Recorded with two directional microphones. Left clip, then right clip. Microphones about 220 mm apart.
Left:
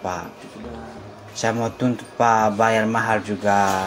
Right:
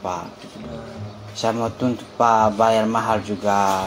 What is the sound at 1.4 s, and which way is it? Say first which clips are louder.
Speech: even; 20° left (ahead or behind).